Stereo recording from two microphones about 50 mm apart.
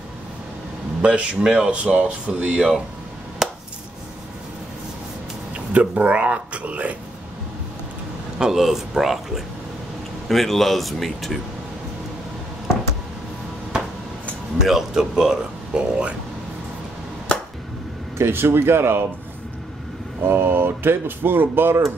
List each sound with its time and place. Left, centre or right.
1.0 s speech: right
3.4 s chopping: centre
5.7 s speech: right
8.4 s a man's voice: centre
14.6 s speech: centre
18.1 s speech: right
20.2 s speech: right